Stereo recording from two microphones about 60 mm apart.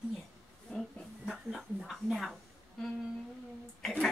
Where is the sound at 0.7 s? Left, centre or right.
Centre.